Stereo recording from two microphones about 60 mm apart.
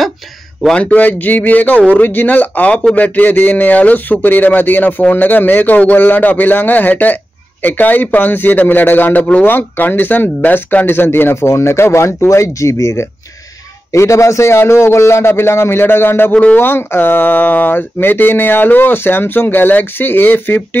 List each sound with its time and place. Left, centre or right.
0.7 s a man's voice: left